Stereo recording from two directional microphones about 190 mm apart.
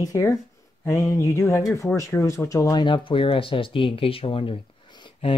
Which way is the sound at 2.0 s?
15° left (ahead or behind).